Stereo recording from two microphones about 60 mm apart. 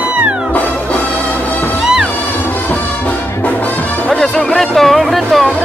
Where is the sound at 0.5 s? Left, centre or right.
Left.